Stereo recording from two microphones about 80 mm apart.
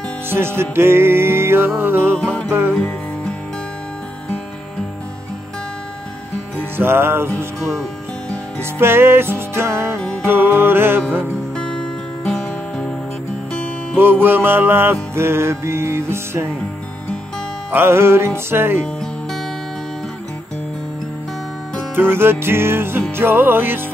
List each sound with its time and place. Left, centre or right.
0.3 s music: right
2.1 s music: centre
6.8 s music: right
11.5 s music: centre
13.9 s music: right
17.6 s music: right
21.9 s music: right